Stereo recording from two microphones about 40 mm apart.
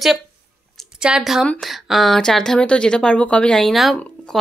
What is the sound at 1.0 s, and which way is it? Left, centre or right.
Speech, centre.